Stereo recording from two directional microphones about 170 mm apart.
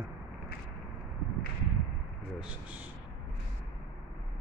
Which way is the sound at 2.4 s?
10° right (ahead or behind).